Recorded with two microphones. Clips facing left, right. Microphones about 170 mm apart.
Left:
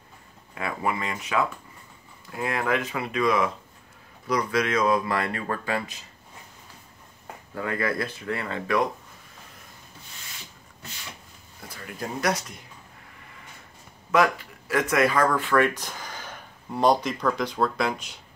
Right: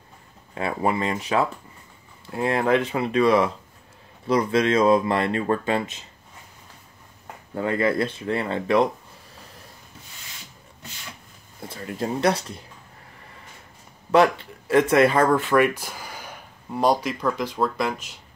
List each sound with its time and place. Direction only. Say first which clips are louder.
0.6 s speech: right 5 dB; 30° right (ahead or behind)
7.5 s speech: right 5 dB; 25° right (ahead or behind)
11.6 s speech: right 6 dB; 25° right (ahead or behind)
14.1 s speech: right 4 dB; 30° right (ahead or behind)
15.5 s speech: right 3 dB; 10° right (ahead or behind)